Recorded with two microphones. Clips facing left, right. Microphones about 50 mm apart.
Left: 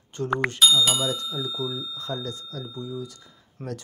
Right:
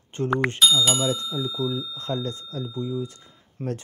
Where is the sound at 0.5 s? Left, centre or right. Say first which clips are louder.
Left 2 dB; centre.